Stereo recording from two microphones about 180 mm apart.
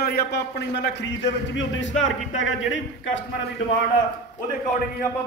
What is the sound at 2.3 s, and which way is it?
Speech, 90° left.